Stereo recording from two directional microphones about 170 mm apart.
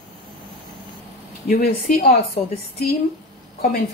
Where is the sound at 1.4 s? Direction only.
65° left (ahead or behind).